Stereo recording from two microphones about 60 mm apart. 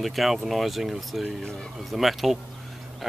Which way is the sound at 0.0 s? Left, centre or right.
Centre.